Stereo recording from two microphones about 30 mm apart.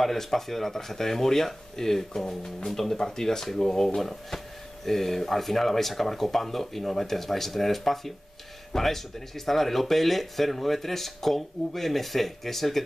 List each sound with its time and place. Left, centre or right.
0.0 s speech: centre